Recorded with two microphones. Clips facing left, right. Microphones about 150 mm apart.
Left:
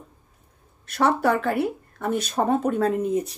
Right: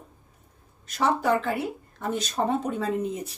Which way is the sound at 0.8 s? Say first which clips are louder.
Left 3 dB; 60° left (ahead or behind).